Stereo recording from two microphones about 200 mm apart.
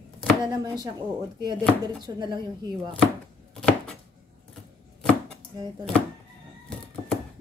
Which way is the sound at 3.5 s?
5° left (ahead or behind).